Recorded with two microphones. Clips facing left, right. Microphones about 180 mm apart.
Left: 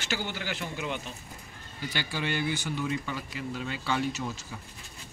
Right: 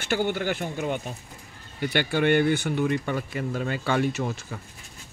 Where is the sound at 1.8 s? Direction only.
60° right (ahead or behind).